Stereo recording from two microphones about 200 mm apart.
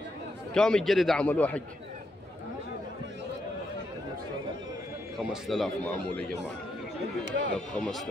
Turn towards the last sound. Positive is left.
turn(degrees=0)  # may be behind; listen again after turning